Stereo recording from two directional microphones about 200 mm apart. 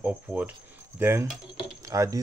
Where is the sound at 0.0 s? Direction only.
5° right (ahead or behind).